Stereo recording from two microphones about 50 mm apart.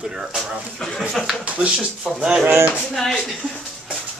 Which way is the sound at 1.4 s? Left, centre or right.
Right.